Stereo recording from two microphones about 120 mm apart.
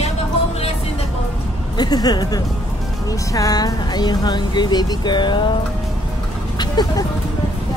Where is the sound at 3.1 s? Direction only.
30° left (ahead or behind).